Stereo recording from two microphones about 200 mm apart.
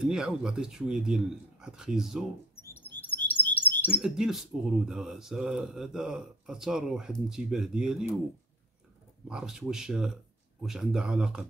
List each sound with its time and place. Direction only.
0.0 s speech: 5° right (ahead or behind)
3.2 s chirp: 10° left (ahead or behind)
3.9 s speech: 5° right (ahead or behind)
9.3 s speech: centre (ahead or behind)